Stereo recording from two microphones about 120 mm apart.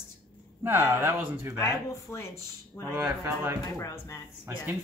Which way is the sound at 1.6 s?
20° left (ahead or behind).